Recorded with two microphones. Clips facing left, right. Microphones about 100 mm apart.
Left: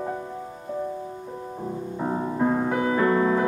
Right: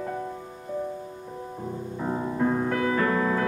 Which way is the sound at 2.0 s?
20° left (ahead or behind).